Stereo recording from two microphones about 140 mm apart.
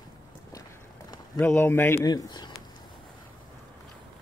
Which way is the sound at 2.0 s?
30° left (ahead or behind).